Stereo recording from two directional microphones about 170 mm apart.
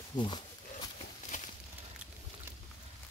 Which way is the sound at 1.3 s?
45° left (ahead or behind).